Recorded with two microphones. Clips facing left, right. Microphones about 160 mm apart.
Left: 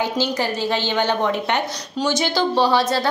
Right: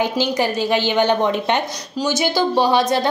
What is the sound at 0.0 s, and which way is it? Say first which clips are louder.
A woman's voice: right 3 dB; 15° right (ahead or behind).